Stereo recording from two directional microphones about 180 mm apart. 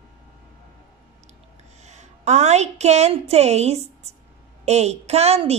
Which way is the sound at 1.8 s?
40° right (ahead or behind).